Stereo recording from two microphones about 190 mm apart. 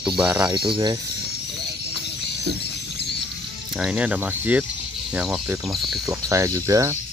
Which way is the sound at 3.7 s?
5° right (ahead or behind).